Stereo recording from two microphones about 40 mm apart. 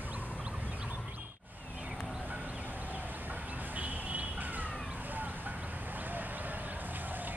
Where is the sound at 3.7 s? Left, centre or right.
Right.